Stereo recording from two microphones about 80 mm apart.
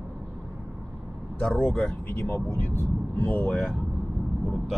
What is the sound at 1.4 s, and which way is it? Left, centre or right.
Speech, centre.